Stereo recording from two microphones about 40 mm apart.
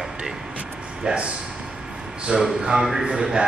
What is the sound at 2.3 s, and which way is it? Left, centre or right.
Speech, centre.